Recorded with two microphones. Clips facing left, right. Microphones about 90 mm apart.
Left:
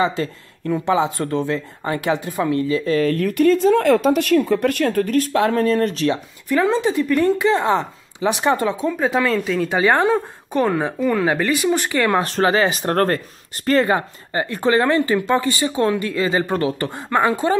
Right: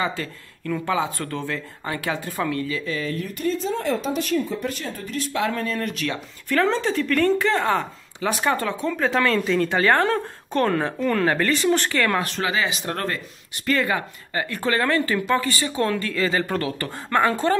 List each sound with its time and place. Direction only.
0.0 s speech: 30° left (ahead or behind)
2.9 s speech: 50° left (ahead or behind)
3.3 s speech: 75° left (ahead or behind); by 6.1 s 35° left (ahead or behind)
6.5 s speech: 15° left (ahead or behind)
12.2 s speech: 35° left (ahead or behind)
13.7 s speech: 30° left (ahead or behind); by 17.6 s 15° left (ahead or behind)